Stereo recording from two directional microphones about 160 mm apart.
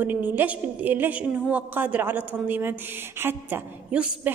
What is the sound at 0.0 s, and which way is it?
A woman's voice, 10° right (ahead or behind).